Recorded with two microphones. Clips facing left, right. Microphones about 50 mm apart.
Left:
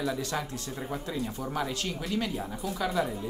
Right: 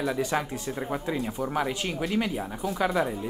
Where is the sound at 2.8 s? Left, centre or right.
Right.